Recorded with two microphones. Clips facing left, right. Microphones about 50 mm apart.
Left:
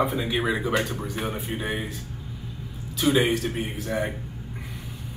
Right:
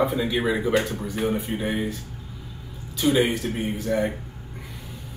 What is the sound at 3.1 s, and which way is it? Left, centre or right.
Speech, centre.